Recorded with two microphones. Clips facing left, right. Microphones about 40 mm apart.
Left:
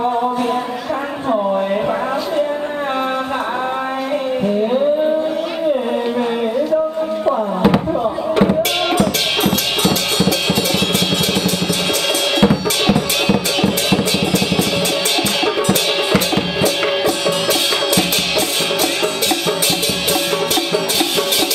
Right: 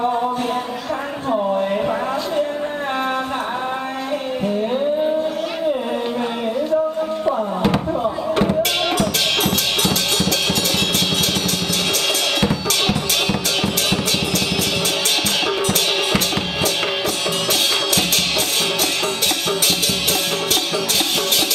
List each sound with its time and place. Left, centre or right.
7.2 s a sound: centre
8.5 s music: centre
12.4 s music: centre
16.6 s music: centre